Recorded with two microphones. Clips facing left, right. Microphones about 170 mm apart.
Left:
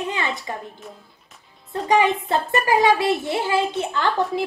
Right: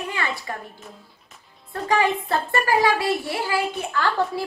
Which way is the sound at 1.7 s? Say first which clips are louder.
Left 3 dB; 20° left (ahead or behind).